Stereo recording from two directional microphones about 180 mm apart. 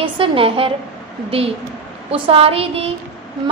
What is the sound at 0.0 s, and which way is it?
Speech, 30° right (ahead or behind).